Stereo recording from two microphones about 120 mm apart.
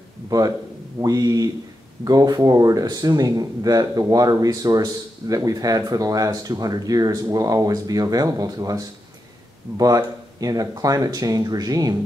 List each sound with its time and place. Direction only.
0.3 s speech: 30° right (ahead or behind)